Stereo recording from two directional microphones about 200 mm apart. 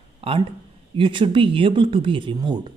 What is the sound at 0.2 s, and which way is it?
Speech, 30° right (ahead or behind).